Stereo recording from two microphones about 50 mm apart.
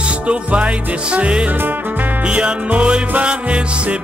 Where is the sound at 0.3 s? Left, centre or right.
Right.